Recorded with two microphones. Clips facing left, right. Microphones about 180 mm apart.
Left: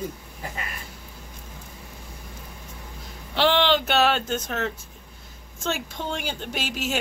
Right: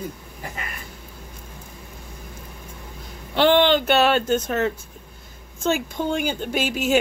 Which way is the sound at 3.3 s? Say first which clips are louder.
Right 4 dB; centre (ahead or behind).